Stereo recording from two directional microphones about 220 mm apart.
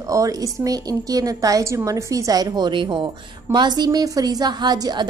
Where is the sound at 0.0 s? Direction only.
15° right (ahead or behind).